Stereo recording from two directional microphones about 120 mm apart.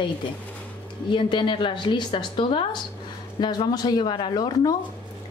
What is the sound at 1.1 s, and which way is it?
A woman's voice, 40° left (ahead or behind).